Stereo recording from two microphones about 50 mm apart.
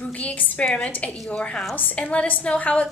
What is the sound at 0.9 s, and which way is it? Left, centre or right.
Speech, left.